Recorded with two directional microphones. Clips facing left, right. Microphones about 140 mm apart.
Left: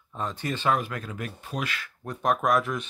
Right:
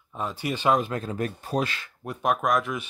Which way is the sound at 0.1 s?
10° right (ahead or behind).